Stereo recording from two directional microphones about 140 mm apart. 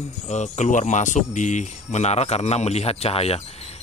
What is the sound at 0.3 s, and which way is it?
Speech, 55° left (ahead or behind).